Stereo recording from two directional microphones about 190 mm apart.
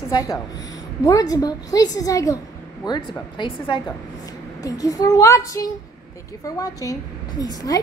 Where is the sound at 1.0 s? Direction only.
20° left (ahead or behind).